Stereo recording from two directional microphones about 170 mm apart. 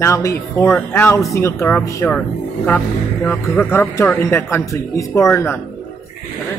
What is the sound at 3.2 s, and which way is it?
Speech, 5° left (ahead or behind).